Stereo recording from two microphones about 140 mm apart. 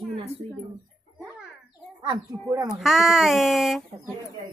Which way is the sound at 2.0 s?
35° right (ahead or behind).